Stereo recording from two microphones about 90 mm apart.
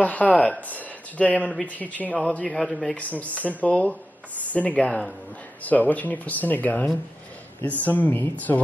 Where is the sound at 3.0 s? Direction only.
15° left (ahead or behind).